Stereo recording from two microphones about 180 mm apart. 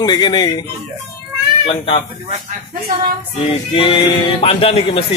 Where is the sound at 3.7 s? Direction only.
30° left (ahead or behind).